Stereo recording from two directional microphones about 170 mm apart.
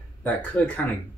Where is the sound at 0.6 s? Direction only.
10° left (ahead or behind).